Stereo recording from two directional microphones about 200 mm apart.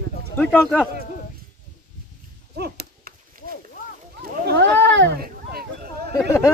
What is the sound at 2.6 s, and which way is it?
Dog, 55° right (ahead or behind).